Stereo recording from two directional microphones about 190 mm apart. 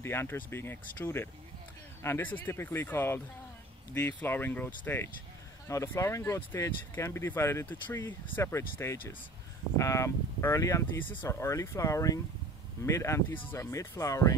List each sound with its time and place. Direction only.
0.0 s speech: 10° left (ahead or behind)